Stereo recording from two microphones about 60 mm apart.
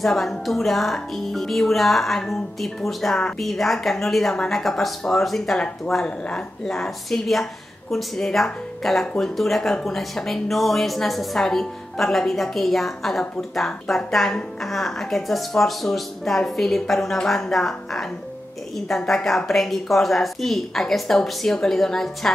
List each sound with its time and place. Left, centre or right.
0.0 s speech: centre
6.0 s speech: centre
6.6 s speech: centre